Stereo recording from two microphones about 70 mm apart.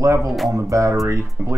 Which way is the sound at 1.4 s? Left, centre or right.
Centre.